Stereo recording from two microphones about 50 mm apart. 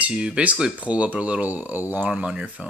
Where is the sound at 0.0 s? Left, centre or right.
Centre; by 2.0 s right.